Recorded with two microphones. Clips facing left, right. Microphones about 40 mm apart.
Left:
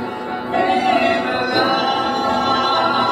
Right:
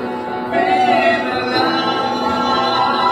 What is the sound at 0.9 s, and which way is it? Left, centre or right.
Music, centre.